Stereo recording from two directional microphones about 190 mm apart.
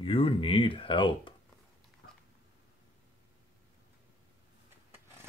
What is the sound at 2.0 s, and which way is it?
Dog, 65° left (ahead or behind).